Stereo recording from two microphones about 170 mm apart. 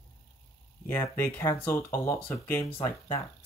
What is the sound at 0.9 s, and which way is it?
Speech, 15° left (ahead or behind).